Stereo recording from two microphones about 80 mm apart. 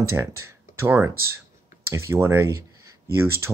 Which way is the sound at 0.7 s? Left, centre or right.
Right.